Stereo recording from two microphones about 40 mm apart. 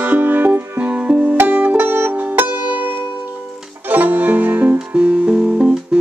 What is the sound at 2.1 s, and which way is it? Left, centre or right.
Music, right.